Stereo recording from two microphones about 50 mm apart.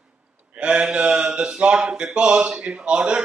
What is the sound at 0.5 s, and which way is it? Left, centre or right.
A man's voice, centre.